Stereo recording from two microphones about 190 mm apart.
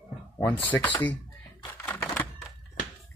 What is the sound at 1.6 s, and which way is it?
Typewriter, 10° left (ahead or behind).